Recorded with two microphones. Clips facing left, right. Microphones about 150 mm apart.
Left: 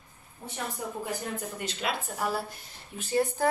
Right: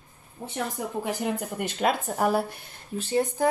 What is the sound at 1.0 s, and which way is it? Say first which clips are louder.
Speech: right 8 dB; 85° right.